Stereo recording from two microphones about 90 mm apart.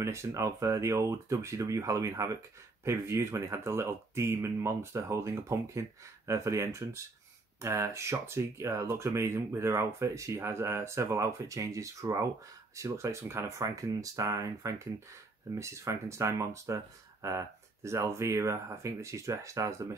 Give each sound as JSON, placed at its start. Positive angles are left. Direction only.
{"t": 0.0, "sound": "speech", "side_deg": -35}